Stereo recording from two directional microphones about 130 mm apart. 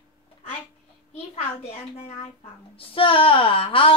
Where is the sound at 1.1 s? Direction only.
55° left (ahead or behind).